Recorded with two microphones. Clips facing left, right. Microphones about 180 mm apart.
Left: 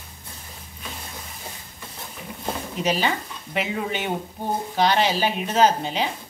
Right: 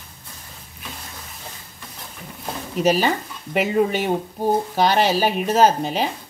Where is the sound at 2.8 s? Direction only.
40° right (ahead or behind).